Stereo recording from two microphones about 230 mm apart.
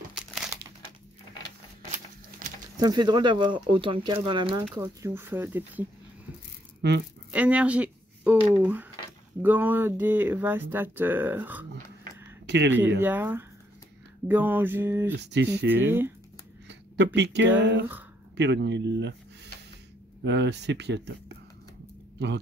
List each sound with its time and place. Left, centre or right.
2.8 s speech: centre
6.8 s speech: right
7.2 s speech: centre
12.4 s speech: right
13.0 s speech: centre
15.1 s speech: right
15.7 s speech: centre
16.6 s a sound: right
17.6 s speech: right
20.2 s speech: right